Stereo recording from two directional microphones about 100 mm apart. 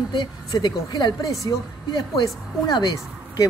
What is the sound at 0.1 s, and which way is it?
A woman's voice, 50° left (ahead or behind).